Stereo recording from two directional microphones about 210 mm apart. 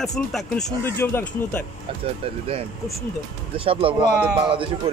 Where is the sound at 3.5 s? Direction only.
25° right (ahead or behind).